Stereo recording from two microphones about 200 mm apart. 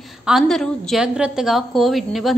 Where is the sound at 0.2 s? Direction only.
Centre (ahead or behind).